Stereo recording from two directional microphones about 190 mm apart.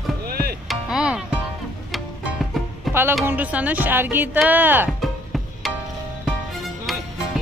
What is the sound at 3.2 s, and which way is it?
Speech, 10° right (ahead or behind).